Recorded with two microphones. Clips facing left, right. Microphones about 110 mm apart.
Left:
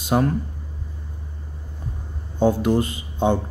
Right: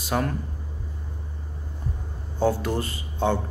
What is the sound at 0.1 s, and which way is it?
Speech, 20° left (ahead or behind).